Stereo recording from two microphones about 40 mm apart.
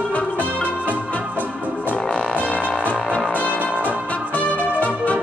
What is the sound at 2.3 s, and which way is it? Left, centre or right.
Music, left.